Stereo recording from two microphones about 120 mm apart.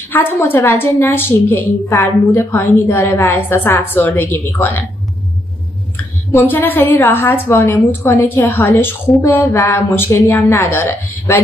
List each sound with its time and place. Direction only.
0.1 s a woman's voice: 15° left (ahead or behind)
6.3 s a woman's voice: 15° left (ahead or behind)